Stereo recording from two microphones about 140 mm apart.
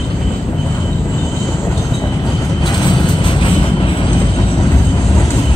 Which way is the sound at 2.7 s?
35° left (ahead or behind).